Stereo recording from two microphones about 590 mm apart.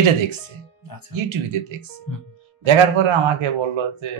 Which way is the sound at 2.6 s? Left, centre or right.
Right.